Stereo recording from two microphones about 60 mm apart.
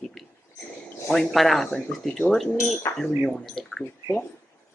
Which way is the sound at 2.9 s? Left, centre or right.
Left.